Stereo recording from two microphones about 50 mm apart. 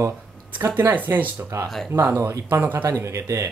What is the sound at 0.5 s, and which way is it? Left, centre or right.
Speech, right.